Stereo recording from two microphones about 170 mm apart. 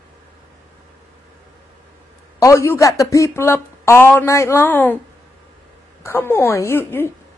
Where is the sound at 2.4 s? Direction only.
15° left (ahead or behind).